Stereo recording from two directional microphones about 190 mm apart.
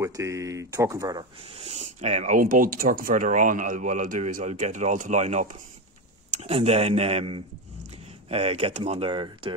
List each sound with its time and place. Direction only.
0.0 s speech: 15° right (ahead or behind)
1.4 s speech: 30° right (ahead or behind)